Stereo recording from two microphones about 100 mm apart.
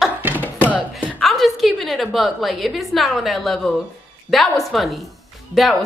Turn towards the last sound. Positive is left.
turn(degrees=0)  # may be behind; listen again after turning